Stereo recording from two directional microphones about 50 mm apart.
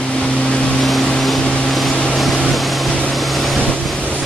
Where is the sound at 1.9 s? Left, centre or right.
Left.